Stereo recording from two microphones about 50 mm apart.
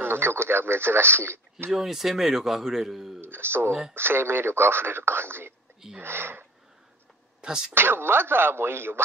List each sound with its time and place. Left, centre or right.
0.0 s radio: right
1.7 s a man's voice: centre
3.2 s speech: right
7.4 s speech: centre
7.7 s speech: right